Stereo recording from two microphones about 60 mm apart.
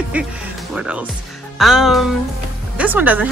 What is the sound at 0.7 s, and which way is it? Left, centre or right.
Speech, centre.